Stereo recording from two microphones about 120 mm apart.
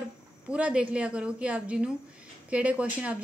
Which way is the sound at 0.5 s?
10° right (ahead or behind).